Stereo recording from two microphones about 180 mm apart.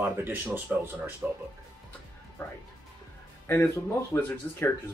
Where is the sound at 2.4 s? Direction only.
10° left (ahead or behind).